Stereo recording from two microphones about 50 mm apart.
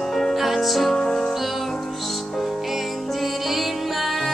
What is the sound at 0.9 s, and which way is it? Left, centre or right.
Music, centre.